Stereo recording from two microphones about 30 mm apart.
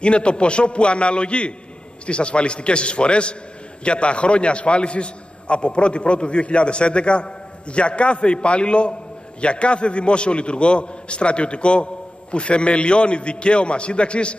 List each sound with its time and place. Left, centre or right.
0.0 s a man's voice: left